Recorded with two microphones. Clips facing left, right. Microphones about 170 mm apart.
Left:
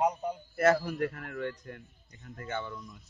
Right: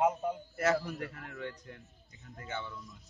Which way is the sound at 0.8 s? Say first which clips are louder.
Left 7 dB; 55° left (ahead or behind).